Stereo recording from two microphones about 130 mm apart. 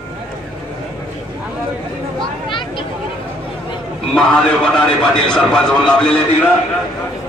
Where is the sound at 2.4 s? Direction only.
40° left (ahead or behind).